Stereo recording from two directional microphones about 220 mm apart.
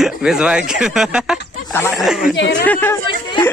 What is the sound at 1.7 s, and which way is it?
Snicker, 10° left (ahead or behind).